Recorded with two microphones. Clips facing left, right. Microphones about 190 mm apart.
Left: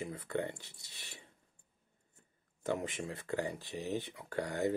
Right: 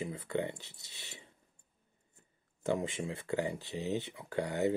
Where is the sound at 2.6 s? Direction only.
25° right (ahead or behind).